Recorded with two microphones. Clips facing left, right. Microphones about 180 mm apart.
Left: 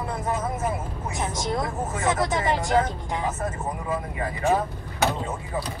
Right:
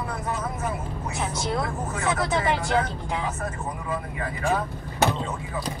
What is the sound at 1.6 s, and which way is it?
Speech, 25° left (ahead or behind).